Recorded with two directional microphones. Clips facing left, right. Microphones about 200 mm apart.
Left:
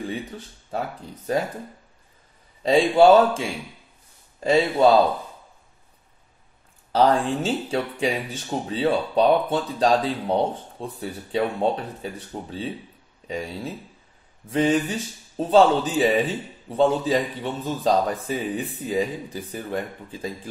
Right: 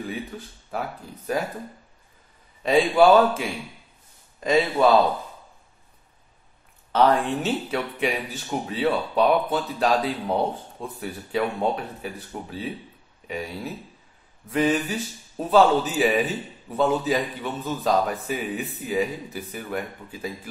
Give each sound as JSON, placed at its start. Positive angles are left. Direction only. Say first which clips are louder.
{"t": 0.3, "sound": "a man's voice", "louder": "left 2 dB", "side_deg": 30}
{"t": 2.6, "sound": "a man's voice", "louder": "left 2 dB", "side_deg": 30}
{"t": 6.9, "sound": "a man's voice", "louder": "left 1 dB", "side_deg": 30}